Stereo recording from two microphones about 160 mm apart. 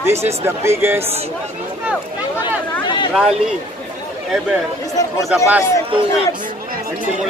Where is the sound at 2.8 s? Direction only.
30° left (ahead or behind).